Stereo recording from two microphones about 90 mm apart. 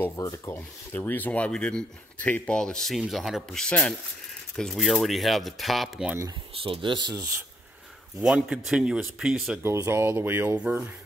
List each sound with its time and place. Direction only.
0.1 s speech: 35° left (ahead or behind)
0.9 s speech: 20° left (ahead or behind); by 3.6 s centre (ahead or behind)
3.6 s speech: 10° left (ahead or behind)
6.6 s speech: 75° right (ahead or behind); by 7.2 s 55° right (ahead or behind)
8.2 s speech: 10° right (ahead or behind)
9.6 s speech: 30° right (ahead or behind)